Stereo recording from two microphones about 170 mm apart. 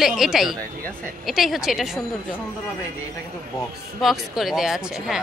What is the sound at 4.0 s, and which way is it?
A woman's voice, centre (ahead or behind).